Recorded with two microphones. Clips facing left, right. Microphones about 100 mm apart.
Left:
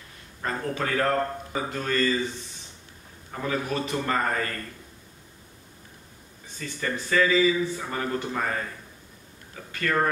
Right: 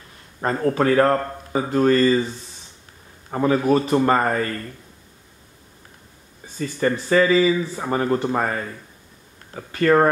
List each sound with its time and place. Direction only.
0.4 s speech: 40° right (ahead or behind)
3.3 s speech: 45° right (ahead or behind)
6.8 s speech: 40° right (ahead or behind)
9.7 s speech: 45° right (ahead or behind)